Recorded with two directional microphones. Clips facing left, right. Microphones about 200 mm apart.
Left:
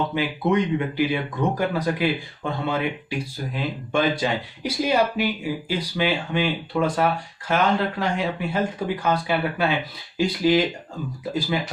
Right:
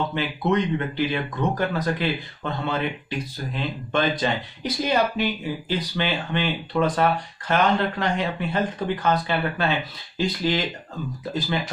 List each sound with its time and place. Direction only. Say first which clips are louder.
0.1 s speech: left 1 dB; 10° left (ahead or behind)